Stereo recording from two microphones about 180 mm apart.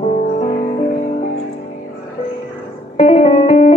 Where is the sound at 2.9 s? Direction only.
35° left (ahead or behind).